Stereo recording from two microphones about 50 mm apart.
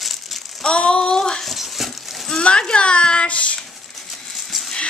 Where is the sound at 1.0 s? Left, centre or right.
Centre.